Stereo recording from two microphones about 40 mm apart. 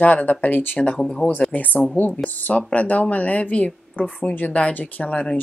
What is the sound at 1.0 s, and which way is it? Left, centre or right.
Speech, centre.